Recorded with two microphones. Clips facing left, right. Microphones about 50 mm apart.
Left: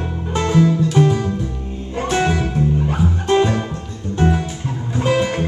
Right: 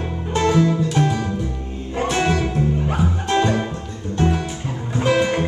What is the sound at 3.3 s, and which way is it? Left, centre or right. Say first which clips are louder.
Music: left 3 dB; centre.